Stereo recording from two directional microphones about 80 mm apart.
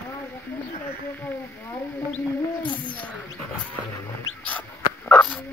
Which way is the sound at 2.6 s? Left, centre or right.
Left.